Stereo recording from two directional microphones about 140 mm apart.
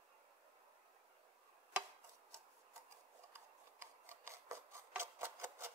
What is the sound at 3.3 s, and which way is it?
Rub, 20° right (ahead or behind).